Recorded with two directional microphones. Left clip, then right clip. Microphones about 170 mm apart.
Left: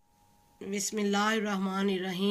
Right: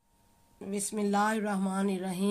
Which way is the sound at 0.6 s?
55° right (ahead or behind).